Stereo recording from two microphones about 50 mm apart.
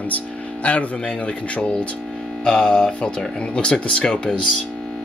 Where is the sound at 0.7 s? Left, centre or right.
Left.